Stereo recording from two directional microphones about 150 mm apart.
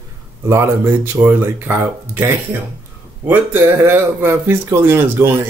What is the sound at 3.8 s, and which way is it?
Speech, 15° right (ahead or behind).